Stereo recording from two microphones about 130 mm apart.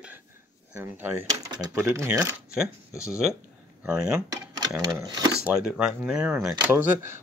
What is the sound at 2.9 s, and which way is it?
Speech, 25° left (ahead or behind).